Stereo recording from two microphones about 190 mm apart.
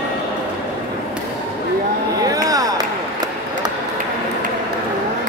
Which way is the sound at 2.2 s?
20° right (ahead or behind).